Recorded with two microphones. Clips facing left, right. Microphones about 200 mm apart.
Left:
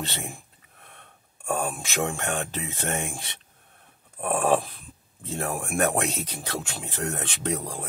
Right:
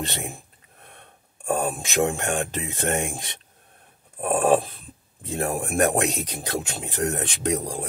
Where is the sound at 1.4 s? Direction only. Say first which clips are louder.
Right 3 dB; 15° right (ahead or behind).